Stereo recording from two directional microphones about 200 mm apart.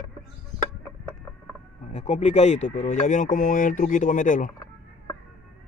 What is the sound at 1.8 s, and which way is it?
Speech, 35° left (ahead or behind).